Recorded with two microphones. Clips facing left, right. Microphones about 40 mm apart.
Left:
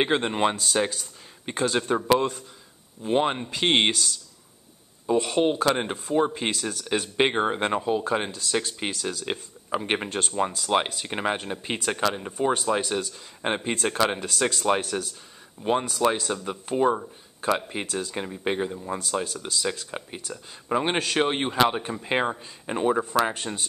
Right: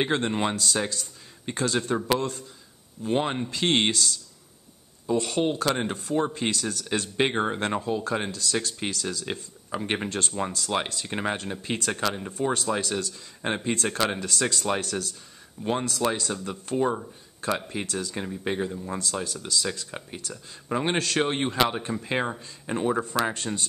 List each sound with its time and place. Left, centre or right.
0.0 s speech: left